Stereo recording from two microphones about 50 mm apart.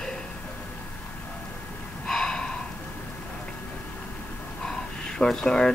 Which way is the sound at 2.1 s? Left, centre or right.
Centre.